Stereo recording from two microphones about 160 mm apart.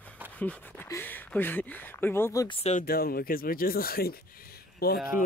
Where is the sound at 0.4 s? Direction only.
10° left (ahead or behind).